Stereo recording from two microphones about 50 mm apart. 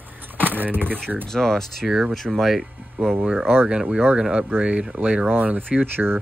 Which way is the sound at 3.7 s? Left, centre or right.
Centre.